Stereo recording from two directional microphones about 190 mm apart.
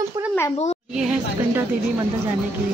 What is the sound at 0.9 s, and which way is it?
Speech, 5° right (ahead or behind).